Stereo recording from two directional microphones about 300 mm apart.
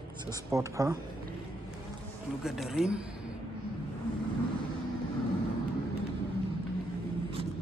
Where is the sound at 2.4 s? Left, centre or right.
Centre.